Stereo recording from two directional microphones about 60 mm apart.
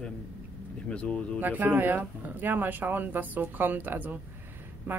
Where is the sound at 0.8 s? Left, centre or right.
Centre.